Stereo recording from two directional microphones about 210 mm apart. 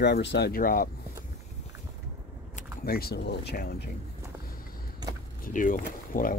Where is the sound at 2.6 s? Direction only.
45° left (ahead or behind).